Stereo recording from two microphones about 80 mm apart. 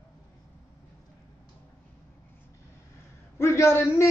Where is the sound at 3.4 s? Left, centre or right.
Left.